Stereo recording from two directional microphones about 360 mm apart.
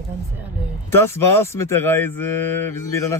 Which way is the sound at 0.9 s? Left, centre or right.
Centre.